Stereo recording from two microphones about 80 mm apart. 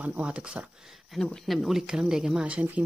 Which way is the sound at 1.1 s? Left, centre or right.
Centre.